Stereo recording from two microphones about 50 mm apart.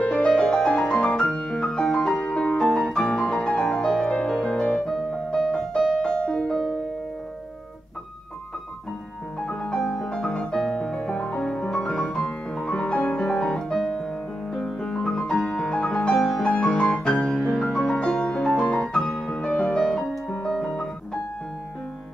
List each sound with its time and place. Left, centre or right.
0.3 s music: centre
9.5 s music: left
9.8 s music: centre
13.3 s music: centre
16.4 s music: left
19.5 s music: left
19.8 s music: centre